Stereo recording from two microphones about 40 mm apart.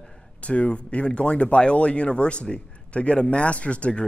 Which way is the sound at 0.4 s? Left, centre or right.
Left.